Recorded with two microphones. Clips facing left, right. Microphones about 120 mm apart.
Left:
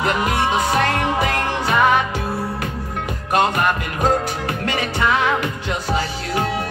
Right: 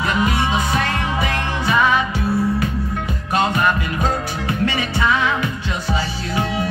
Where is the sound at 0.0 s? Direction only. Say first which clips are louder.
Even; 55° left (ahead or behind).